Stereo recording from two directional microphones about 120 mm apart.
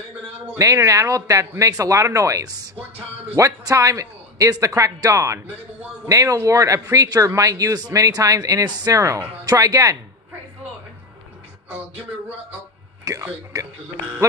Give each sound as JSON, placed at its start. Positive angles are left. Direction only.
{"t": 0.6, "sound": "speech", "side_deg": -25}
{"t": 13.1, "sound": "a man's voice", "side_deg": -30}